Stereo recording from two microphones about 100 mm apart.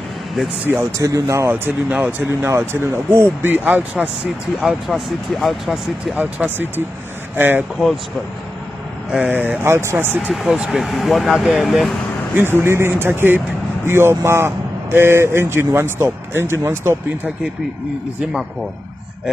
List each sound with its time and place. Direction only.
0.9 s speech: 35° right (ahead or behind)
1.5 s speech: 15° right (ahead or behind)
4.6 s speech: 5° right (ahead or behind)
6.1 s speech: 20° right (ahead or behind)
9.1 s speech: 15° right (ahead or behind)
10.3 s speech: 5° right (ahead or behind)
12.4 s speech: 25° right (ahead or behind)